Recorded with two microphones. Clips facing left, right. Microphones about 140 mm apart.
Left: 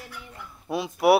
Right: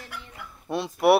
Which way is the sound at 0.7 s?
Centre (ahead or behind).